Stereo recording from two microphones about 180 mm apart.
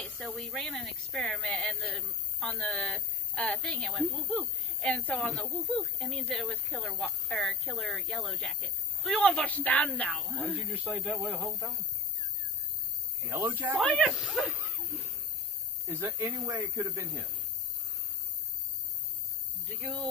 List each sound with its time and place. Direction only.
0.0 s speech: centre (ahead or behind)
13.6 s speech: 10° right (ahead or behind)
13.8 s speech: centre (ahead or behind)
15.9 s speech: 15° right (ahead or behind)
19.7 s speech: 5° left (ahead or behind)